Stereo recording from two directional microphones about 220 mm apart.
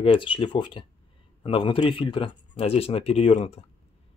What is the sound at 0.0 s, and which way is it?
Speech, 25° left (ahead or behind).